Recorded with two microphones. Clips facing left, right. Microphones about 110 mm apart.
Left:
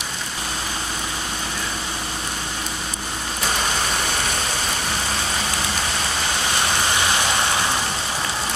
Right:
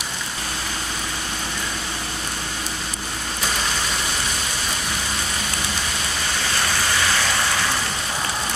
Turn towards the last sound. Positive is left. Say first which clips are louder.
# left 1 dB
turn(degrees=20)  # may be behind; listen again after turning